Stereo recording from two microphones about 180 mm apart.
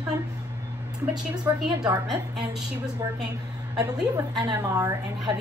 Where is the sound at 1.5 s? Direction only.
15° right (ahead or behind).